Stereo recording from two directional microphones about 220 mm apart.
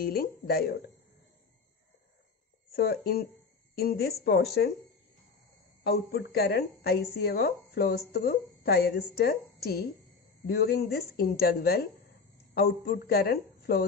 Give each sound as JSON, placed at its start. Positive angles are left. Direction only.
{"t": 0.0, "sound": "a woman's voice", "side_deg": 45}
{"t": 2.7, "sound": "a woman's voice", "side_deg": 45}
{"t": 5.9, "sound": "a woman's voice", "side_deg": 45}